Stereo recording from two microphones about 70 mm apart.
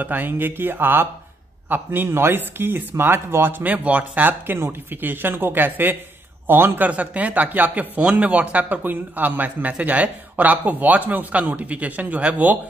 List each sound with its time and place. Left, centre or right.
0.0 s speech: right